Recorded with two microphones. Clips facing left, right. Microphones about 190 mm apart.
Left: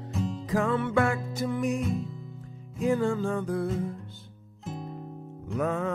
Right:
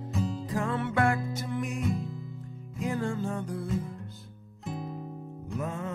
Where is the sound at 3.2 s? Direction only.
90° left.